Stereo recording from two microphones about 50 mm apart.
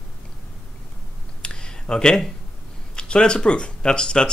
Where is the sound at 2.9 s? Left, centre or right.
Centre.